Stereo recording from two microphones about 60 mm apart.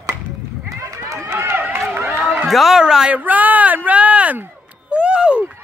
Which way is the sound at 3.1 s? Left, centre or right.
Right.